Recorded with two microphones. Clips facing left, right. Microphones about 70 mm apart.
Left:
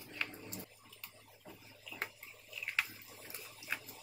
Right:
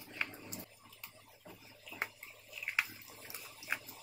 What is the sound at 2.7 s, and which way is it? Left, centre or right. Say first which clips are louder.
Bathtub: right 1 dB; centre.